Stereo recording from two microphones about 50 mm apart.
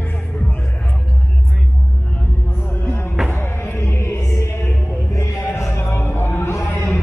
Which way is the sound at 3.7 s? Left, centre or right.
Left.